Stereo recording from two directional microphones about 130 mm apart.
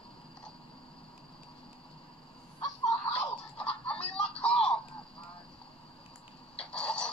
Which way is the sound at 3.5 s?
5° left (ahead or behind).